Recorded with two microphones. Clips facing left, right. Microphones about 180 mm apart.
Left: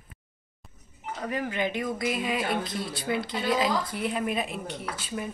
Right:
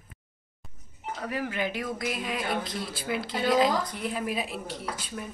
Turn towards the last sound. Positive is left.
turn(degrees=0)  # may be behind; listen again after turning